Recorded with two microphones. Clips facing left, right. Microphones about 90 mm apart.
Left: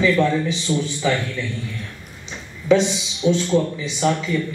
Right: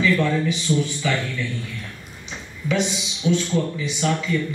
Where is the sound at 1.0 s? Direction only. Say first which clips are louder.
Left 5 dB; 30° left (ahead or behind).